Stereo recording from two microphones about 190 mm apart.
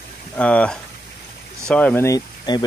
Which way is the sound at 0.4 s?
5° left (ahead or behind).